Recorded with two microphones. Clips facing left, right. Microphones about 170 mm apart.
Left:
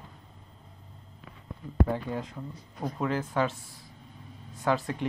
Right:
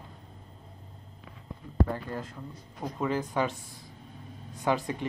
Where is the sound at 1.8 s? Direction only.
5° left (ahead or behind).